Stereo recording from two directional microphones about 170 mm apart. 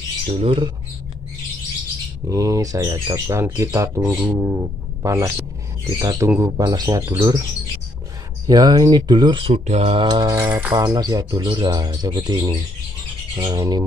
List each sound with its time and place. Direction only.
0.4 s speech: 30° right (ahead or behind)
2.2 s speech: 20° right (ahead or behind)
8.5 s speech: 25° right (ahead or behind)
10.0 s speech: 20° right (ahead or behind)